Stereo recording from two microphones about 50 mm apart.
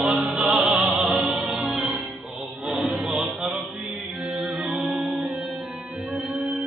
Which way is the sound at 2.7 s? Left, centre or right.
Centre.